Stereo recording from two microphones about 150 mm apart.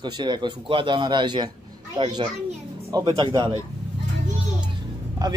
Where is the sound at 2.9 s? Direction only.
25° right (ahead or behind).